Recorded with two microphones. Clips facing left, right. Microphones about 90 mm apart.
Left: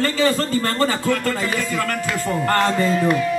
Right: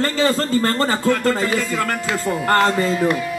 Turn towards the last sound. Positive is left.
turn(degrees=0)  # may be behind; listen again after turning